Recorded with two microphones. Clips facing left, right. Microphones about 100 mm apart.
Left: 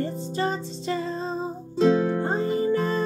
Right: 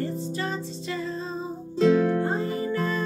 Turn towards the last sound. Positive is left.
turn(degrees=35)  # may be behind; listen again after turning